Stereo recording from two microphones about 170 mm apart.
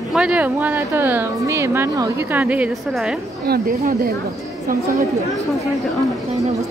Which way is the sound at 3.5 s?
65° right (ahead or behind).